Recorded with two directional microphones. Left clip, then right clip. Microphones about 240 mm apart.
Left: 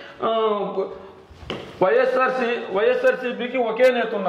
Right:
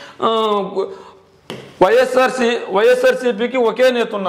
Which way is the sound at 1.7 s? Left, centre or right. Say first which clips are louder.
Right 6 dB; right.